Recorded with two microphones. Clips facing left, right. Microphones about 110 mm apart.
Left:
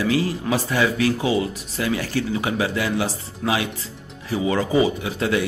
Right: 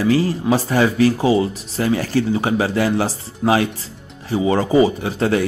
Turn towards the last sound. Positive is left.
turn(degrees=-35)  # may be behind; listen again after turning